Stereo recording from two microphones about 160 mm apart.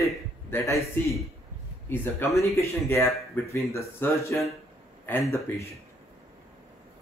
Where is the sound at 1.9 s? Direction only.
15° left (ahead or behind).